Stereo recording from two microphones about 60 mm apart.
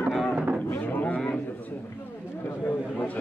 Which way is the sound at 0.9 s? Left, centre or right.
Left.